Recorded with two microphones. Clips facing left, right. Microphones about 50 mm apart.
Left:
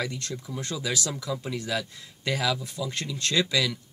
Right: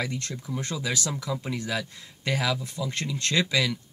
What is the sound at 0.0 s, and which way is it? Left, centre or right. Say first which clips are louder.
Speech: even; right.